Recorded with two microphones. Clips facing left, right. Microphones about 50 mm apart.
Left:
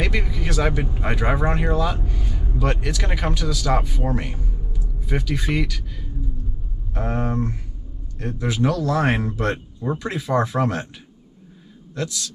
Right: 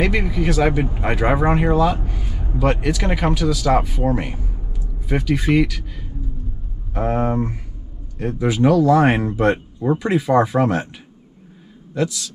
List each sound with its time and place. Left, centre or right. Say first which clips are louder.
0.0 s speech: right 6 dB; centre
2.4 s a sound: right 5 dB; centre
2.7 s a man's voice: right 5 dB; centre